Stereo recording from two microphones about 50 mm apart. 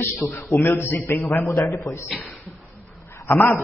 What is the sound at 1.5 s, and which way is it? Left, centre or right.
Speech, left.